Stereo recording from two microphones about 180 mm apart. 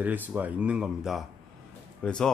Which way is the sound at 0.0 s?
10° right (ahead or behind).